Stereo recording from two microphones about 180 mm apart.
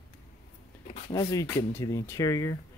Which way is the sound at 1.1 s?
20° left (ahead or behind).